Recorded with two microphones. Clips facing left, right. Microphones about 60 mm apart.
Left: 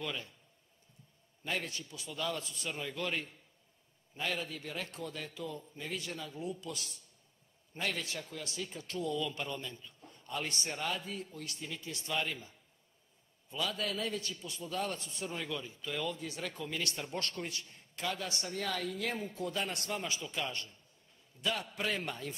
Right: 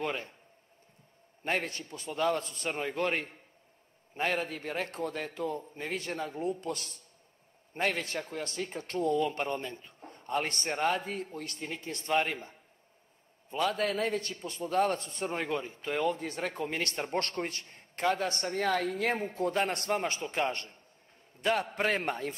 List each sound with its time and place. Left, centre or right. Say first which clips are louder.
0.0 s a man's voice: right 6 dB; right
1.4 s a man's voice: right 6 dB; right